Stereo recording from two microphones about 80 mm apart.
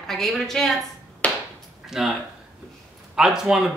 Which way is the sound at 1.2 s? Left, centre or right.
Centre.